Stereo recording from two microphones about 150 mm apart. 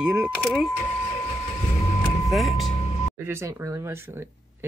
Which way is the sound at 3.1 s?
15° right (ahead or behind).